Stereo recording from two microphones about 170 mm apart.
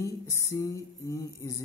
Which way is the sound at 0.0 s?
20° left (ahead or behind).